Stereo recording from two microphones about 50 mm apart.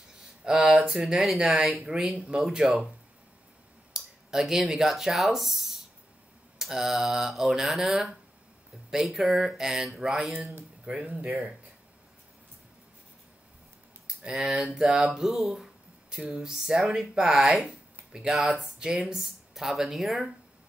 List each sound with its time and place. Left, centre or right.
0.5 s speech: centre
3.9 s speech: centre
10.9 s speech: right
14.0 s a sound: centre
14.8 s speech: centre
17.6 s a sound: centre
18.4 s speech: centre